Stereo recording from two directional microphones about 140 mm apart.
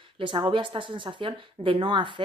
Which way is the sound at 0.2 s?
35° right (ahead or behind).